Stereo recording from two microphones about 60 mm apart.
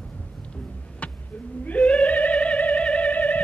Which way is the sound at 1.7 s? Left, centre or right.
Left.